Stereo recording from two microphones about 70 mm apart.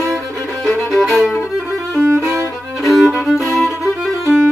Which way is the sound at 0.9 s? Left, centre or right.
Centre.